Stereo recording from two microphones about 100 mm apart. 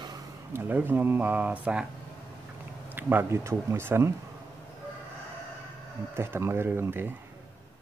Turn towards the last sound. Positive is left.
turn(degrees=-20)  # may be behind; listen again after turning